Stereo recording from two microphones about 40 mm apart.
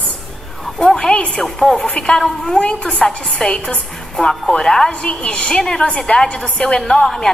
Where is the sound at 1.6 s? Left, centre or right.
Left.